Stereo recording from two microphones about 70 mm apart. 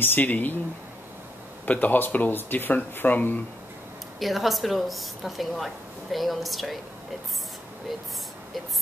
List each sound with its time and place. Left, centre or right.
0.0 s speech: left
1.7 s speech: left
4.2 s a woman's voice: centre